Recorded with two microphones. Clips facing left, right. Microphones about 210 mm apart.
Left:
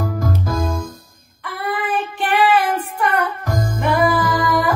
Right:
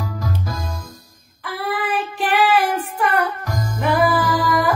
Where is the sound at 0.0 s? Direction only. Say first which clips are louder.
Left 5 dB; 50° left (ahead or behind).